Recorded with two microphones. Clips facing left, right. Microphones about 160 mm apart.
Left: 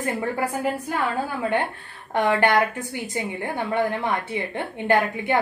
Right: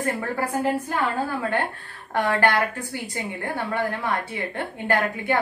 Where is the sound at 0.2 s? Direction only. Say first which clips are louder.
Left 1 dB; 20° left (ahead or behind).